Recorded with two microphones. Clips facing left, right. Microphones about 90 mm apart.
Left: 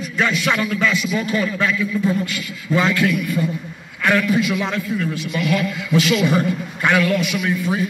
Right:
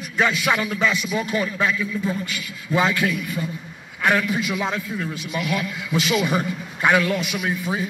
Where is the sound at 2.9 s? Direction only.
70° left (ahead or behind).